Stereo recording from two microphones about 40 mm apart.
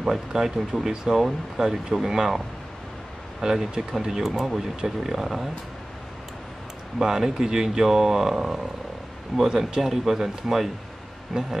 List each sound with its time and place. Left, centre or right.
0.0 s speech: centre
3.4 s speech: centre
7.0 s speech: centre
11.3 s a sound: right